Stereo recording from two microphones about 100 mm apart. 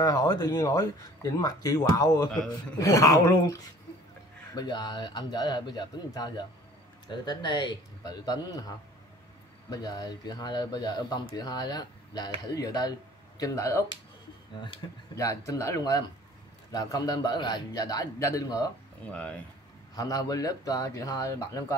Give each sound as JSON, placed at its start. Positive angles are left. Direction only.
{"t": 0.0, "sound": "speech", "side_deg": 40}
{"t": 4.6, "sound": "speech", "side_deg": 45}
{"t": 15.1, "sound": "speech", "side_deg": 35}
{"t": 20.0, "sound": "speech", "side_deg": 40}